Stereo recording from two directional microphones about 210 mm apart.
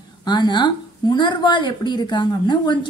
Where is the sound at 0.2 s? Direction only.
20° left (ahead or behind).